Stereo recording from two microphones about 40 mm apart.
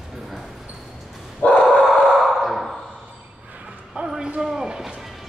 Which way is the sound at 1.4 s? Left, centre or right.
Left.